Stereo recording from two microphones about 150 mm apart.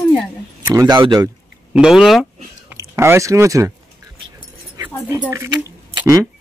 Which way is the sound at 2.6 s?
20° right (ahead or behind).